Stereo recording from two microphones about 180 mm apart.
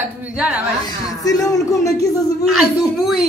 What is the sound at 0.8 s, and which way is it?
Speech, 20° left (ahead or behind).